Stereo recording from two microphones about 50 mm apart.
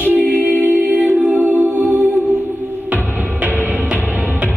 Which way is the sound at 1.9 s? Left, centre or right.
Right.